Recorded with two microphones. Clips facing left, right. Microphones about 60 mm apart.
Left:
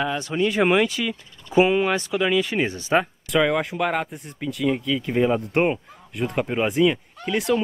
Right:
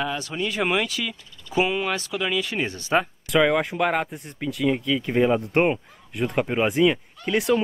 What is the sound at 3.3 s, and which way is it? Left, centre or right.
Speech, centre.